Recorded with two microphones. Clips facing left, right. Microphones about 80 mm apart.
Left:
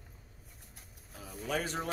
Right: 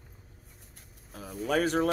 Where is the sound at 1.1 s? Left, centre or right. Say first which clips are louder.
Right 7 dB; right.